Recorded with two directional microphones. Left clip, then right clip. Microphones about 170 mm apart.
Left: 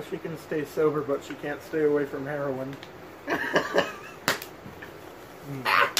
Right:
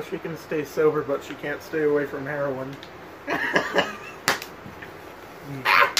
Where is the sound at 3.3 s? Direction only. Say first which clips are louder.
Right 2 dB; 10° left (ahead or behind).